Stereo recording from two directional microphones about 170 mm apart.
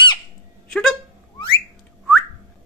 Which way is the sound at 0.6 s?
5° left (ahead or behind).